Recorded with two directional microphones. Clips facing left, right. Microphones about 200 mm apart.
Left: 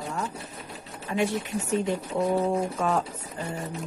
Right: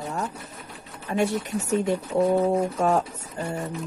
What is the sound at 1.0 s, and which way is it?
Speech, 45° right (ahead or behind).